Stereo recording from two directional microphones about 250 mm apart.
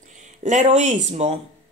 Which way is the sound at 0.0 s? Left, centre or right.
Right.